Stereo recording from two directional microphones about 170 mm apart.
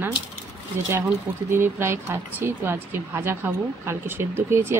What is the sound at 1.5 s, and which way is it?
A woman's voice, 15° right (ahead or behind).